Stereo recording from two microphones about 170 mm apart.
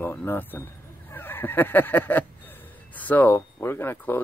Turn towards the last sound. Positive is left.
turn(degrees=10)  # may be behind; listen again after turning